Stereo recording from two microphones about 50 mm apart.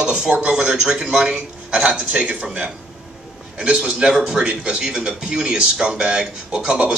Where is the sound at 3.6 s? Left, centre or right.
Centre.